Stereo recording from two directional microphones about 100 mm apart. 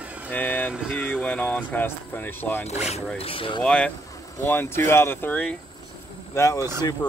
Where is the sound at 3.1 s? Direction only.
70° left (ahead or behind).